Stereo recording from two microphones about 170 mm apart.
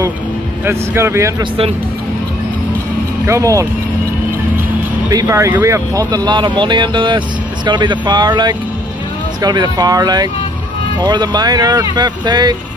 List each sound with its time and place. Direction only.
0.7 s speech: 15° right (ahead or behind)
3.3 s speech: 20° right (ahead or behind)
5.1 s speech: 20° right (ahead or behind)